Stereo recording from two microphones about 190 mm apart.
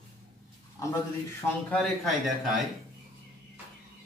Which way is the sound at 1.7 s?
Centre (ahead or behind).